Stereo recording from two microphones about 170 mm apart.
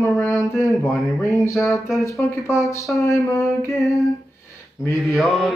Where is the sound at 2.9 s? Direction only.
20° left (ahead or behind).